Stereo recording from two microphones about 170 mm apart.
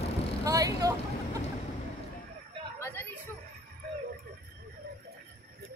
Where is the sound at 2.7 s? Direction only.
15° left (ahead or behind).